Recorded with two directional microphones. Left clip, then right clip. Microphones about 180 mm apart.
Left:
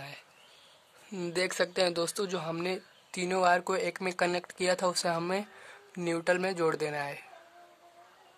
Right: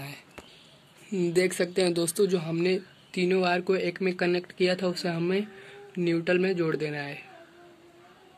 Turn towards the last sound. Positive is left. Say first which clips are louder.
# right 2 dB
turn(degrees=65)  # may be behind; listen again after turning